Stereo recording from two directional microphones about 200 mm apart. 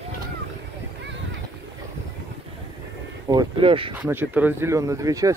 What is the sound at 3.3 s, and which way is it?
Speech, 25° right (ahead or behind).